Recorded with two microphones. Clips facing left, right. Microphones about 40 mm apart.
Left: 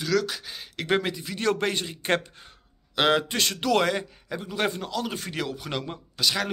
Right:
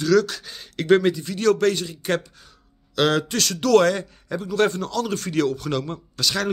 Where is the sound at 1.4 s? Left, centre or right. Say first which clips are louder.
Right 6 dB; left.